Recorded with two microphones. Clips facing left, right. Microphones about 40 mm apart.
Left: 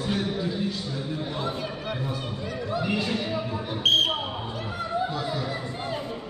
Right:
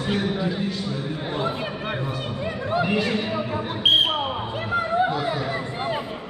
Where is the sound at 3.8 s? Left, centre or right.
Centre.